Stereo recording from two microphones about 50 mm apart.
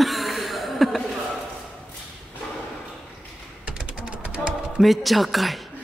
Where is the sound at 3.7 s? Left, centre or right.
Right.